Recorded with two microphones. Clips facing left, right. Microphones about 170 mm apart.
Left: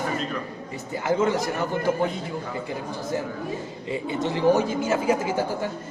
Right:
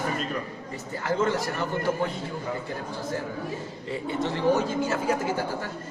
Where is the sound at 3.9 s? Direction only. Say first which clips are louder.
Left 2 dB; 15° left (ahead or behind).